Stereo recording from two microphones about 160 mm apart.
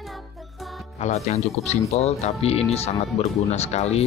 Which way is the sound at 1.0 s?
45° left (ahead or behind).